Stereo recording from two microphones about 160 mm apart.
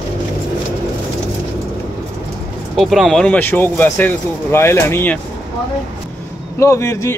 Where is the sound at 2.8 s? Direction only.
Centre (ahead or behind).